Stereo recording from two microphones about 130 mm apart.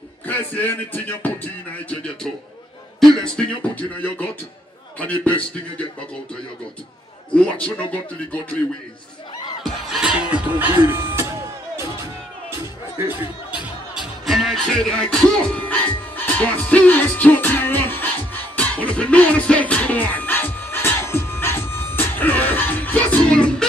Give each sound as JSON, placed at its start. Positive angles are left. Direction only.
{"t": 0.3, "sound": "music", "side_deg": 15}
{"t": 7.3, "sound": "music", "side_deg": 10}
{"t": 9.6, "sound": "music", "side_deg": -5}
{"t": 13.9, "sound": "music", "side_deg": 0}